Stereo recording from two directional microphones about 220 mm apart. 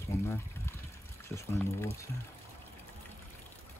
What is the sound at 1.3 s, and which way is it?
Speech, 10° left (ahead or behind).